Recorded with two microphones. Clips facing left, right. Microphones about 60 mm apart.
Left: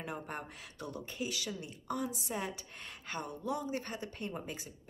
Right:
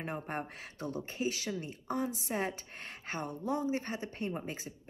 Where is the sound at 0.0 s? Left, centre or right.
Right.